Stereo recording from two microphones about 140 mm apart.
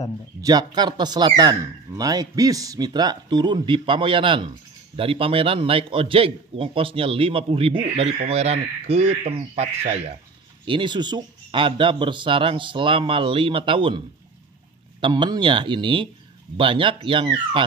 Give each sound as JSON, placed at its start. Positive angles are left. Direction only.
{"t": 0.4, "sound": "a man's voice", "side_deg": -30}
{"t": 10.6, "sound": "a man's voice", "side_deg": -35}